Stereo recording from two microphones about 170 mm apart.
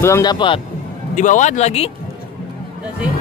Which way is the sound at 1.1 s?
50° left (ahead or behind).